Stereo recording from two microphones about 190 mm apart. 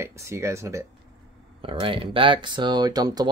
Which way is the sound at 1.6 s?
30° right (ahead or behind).